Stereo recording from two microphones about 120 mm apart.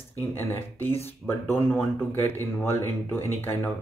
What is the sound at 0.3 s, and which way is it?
Speech, 20° left (ahead or behind).